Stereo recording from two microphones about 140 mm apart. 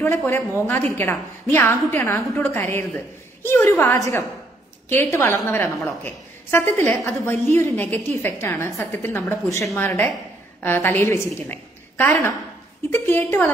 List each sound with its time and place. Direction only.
0.0 s a woman's voice: 15° left (ahead or behind)